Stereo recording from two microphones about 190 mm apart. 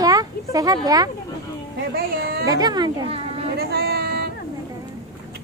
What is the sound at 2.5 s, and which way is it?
Speech, 20° right (ahead or behind).